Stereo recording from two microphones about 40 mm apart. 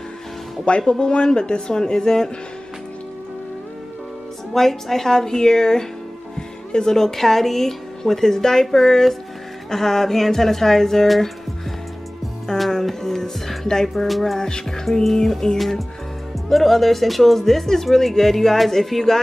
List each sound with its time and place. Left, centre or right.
0.7 s speech: left
4.6 s speech: centre
12.5 s speech: centre
13.8 s speech: centre